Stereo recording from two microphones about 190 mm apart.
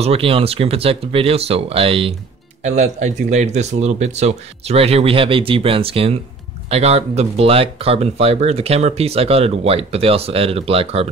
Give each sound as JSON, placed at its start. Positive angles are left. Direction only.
{"t": 0.0, "sound": "speech", "side_deg": -30}